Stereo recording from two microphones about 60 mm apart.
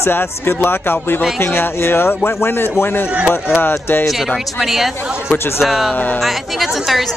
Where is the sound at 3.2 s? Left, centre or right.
Centre.